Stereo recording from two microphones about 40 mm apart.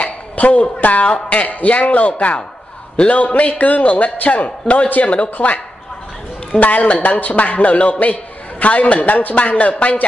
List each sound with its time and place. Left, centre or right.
0.0 s a sound: left
0.7 s a man's voice: left
1.0 s a man's voice: left
4.8 s speech: left
5.1 s a man's voice: left
6.6 s a man's voice: left